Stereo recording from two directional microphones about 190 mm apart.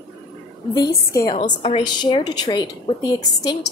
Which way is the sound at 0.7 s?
20° left (ahead or behind).